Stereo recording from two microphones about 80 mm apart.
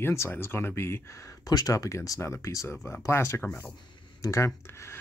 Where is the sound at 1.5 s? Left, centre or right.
Left.